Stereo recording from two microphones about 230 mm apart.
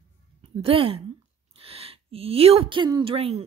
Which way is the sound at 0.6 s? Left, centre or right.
Right.